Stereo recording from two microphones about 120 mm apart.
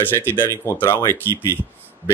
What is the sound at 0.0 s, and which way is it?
Speech, 15° left (ahead or behind).